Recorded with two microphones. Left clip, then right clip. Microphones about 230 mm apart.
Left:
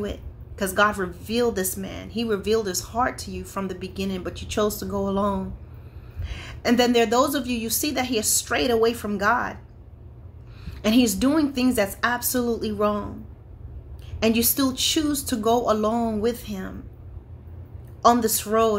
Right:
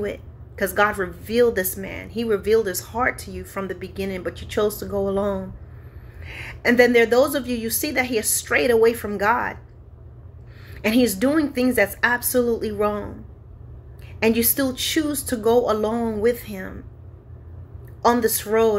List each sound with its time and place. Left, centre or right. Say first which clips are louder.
0.0 s a woman's voice: right 4 dB; centre
6.2 s speech: right 4 dB; centre
10.6 s speech: right 2 dB; centre
14.2 s speech: right 2 dB; centre
18.0 s speech: even; centre